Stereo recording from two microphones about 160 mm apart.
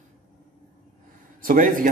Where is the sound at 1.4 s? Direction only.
60° right (ahead or behind).